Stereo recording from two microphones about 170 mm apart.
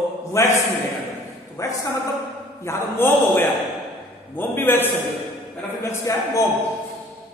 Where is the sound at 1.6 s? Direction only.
20° left (ahead or behind).